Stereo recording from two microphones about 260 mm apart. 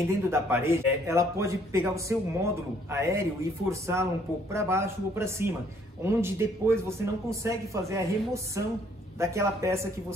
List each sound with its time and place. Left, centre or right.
0.3 s speech: centre